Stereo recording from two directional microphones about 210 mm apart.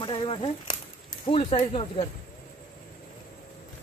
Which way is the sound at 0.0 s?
25° left (ahead or behind).